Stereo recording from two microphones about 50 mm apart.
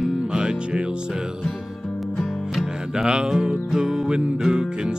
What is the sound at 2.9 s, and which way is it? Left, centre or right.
Music, centre.